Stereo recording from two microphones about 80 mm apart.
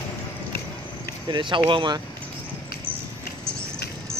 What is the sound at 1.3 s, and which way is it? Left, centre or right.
Speech, right.